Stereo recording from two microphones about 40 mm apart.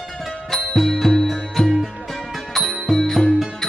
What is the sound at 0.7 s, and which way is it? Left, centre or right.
Music, centre.